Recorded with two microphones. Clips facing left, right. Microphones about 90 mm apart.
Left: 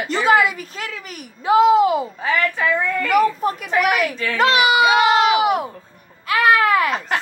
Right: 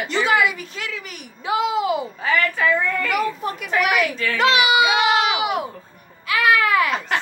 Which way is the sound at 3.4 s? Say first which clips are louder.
Left 3 dB; 45° left (ahead or behind).